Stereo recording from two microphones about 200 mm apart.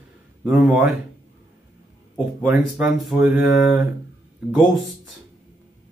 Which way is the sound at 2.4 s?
Centre (ahead or behind).